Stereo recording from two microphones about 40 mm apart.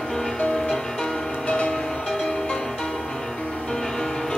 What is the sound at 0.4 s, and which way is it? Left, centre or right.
Music, centre.